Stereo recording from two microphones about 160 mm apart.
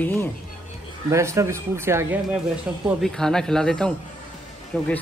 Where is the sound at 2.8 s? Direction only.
Centre (ahead or behind).